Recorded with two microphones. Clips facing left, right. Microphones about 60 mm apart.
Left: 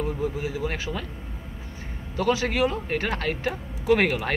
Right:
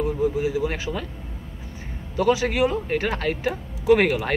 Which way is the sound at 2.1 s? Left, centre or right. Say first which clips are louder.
Right 3 dB; centre.